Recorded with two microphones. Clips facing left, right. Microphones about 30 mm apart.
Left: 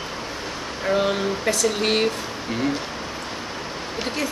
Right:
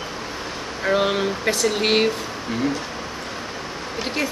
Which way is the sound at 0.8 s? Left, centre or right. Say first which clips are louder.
Right 1 dB; centre.